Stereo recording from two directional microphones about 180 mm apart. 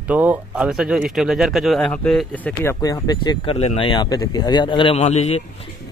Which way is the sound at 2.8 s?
20° left (ahead or behind).